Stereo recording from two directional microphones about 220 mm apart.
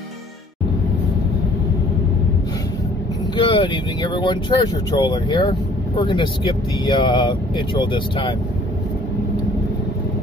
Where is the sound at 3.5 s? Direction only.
20° left (ahead or behind).